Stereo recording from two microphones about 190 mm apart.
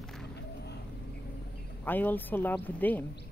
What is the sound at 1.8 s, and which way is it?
Speech, 10° left (ahead or behind).